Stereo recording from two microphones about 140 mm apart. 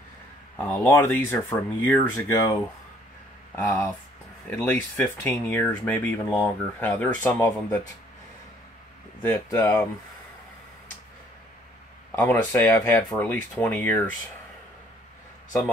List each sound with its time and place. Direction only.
0.6 s speech: 10° left (ahead or behind)
3.5 s speech: 10° left (ahead or behind)
9.2 s speech: 15° left (ahead or behind)
12.2 s speech: 15° left (ahead or behind)